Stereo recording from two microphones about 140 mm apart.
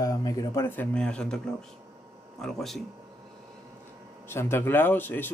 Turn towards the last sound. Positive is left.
turn(degrees=15)  # may be behind; listen again after turning